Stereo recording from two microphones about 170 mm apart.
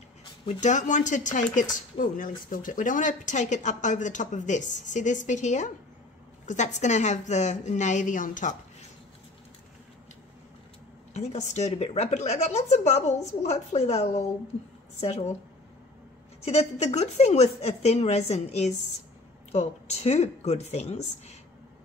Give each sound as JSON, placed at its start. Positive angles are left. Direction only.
{"t": 0.6, "sound": "speech", "side_deg": 45}
{"t": 11.1, "sound": "a woman's voice", "side_deg": 45}
{"t": 16.4, "sound": "a woman's voice", "side_deg": 40}